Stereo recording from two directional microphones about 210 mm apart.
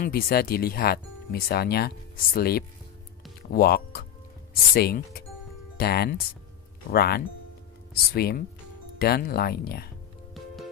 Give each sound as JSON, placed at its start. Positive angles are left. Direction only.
{"t": 0.0, "sound": "speech", "side_deg": 45}
{"t": 10.3, "sound": "music", "side_deg": 0}